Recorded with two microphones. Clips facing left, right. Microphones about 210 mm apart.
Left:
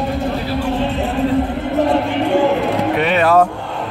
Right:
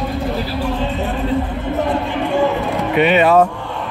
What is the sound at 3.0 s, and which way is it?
Speech, centre (ahead or behind).